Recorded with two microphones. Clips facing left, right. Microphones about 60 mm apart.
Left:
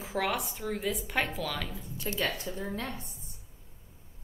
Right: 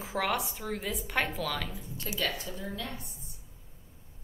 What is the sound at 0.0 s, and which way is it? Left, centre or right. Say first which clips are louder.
A woman's voice: even; centre.